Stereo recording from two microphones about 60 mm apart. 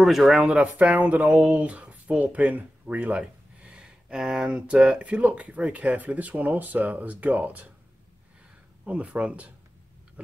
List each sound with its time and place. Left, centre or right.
0.0 s speech: centre
0.6 s speech: right
8.8 s speech: right
10.2 s a sound: right